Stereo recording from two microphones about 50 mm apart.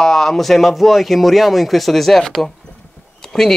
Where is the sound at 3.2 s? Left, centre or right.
Centre.